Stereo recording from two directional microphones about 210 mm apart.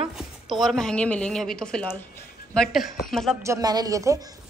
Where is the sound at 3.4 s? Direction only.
15° right (ahead or behind).